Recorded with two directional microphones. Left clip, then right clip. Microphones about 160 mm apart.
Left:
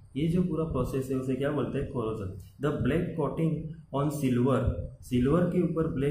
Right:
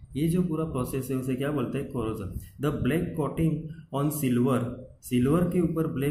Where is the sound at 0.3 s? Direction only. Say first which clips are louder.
Left 1 dB; 30° right (ahead or behind).